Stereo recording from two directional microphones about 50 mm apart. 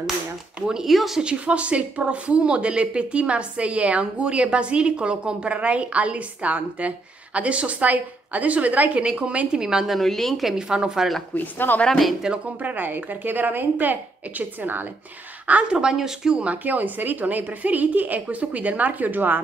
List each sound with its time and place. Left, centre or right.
0.6 s speech: centre
0.8 s a woman's voice: centre
1.2 s a woman's voice: right
9.6 s speech: centre
9.9 s a woman's voice: centre
10.7 s speech: centre
11.3 s speech: left
12.2 s speech: centre
12.6 s a woman's voice: right
15.7 s speech: centre
16.4 s a woman's voice: right